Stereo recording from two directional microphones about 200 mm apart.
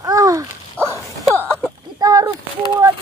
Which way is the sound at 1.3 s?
5° left (ahead or behind).